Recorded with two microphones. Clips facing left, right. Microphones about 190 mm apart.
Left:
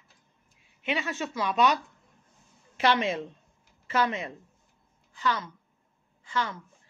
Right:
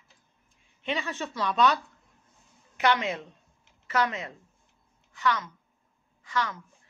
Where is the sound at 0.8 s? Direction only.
10° left (ahead or behind).